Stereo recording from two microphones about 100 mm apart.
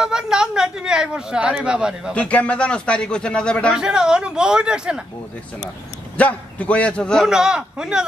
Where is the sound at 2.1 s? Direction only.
15° left (ahead or behind).